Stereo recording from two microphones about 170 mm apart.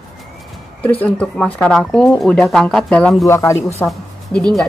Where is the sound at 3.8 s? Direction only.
5° left (ahead or behind).